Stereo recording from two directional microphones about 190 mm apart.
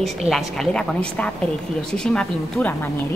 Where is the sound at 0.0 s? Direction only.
Centre (ahead or behind).